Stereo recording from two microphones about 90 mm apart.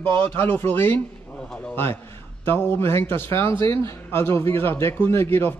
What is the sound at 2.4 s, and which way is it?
Speech, 20° left (ahead or behind).